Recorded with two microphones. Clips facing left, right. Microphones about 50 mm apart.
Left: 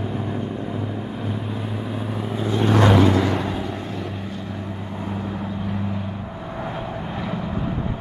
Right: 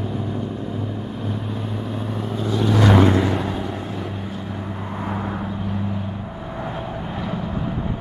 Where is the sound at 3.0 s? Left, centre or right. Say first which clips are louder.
Right 1 dB; right.